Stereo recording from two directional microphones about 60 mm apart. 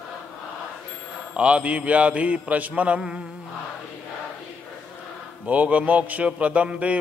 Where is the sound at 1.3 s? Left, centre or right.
Right.